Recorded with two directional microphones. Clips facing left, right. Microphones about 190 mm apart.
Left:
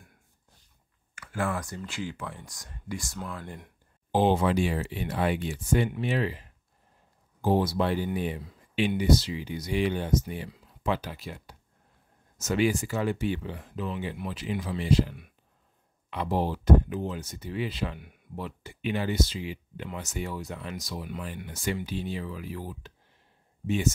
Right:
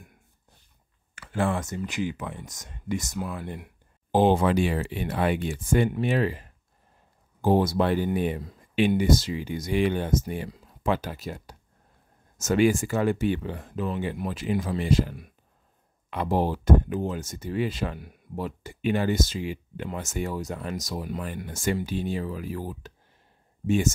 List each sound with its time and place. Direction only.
1.1 s speech: 30° right (ahead or behind); by 3.7 s 10° right (ahead or behind)
4.1 s speech: 50° right (ahead or behind)